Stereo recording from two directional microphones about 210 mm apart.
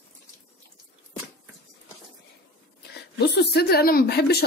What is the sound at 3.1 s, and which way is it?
A woman's voice, 50° left (ahead or behind).